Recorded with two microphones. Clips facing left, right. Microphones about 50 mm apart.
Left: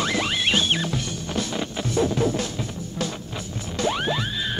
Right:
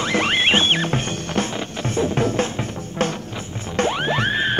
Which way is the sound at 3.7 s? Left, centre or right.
Right.